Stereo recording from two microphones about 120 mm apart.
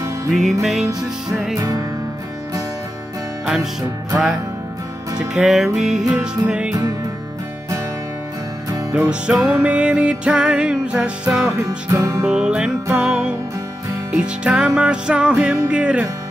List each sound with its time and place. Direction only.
0.3 s music: centre (ahead or behind)
1.6 s music: 30° right (ahead or behind)
5.3 s music: 5° right (ahead or behind)
8.9 s music: 10° right (ahead or behind)
11.5 s music: 25° right (ahead or behind)
12.3 s music: 5° right (ahead or behind)